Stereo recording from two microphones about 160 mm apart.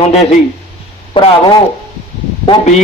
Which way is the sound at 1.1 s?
30° left (ahead or behind).